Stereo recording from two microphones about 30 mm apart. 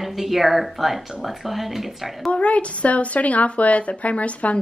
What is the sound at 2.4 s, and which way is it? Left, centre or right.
Speech, left.